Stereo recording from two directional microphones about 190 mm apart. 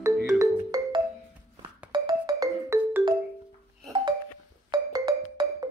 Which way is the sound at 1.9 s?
20° right (ahead or behind).